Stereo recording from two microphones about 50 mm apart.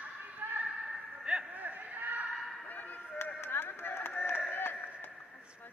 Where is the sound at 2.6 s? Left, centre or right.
Left.